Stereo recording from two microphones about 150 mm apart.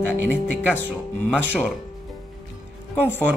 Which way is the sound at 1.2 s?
10° left (ahead or behind).